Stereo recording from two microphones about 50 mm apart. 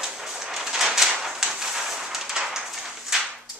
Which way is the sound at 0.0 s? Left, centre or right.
Centre.